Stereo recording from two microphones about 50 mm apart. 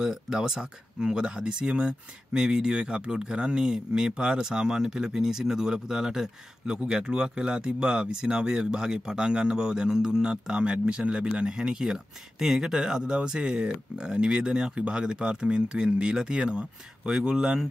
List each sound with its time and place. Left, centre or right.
0.0 s speech: centre